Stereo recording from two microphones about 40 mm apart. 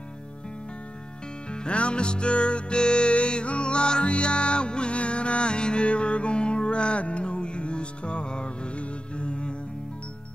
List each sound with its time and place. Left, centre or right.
1.5 s music: left